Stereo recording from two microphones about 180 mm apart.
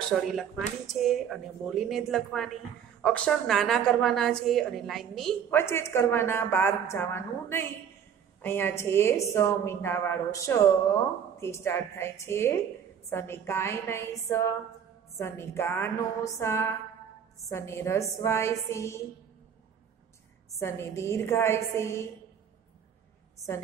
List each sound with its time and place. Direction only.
0.4 s a woman's voice: centre (ahead or behind)
5.5 s a woman's voice: 15° left (ahead or behind)
20.5 s a woman's voice: 15° left (ahead or behind)
23.4 s a woman's voice: 20° left (ahead or behind)